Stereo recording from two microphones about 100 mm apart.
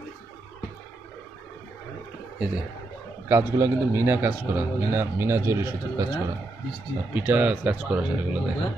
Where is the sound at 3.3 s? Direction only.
25° right (ahead or behind).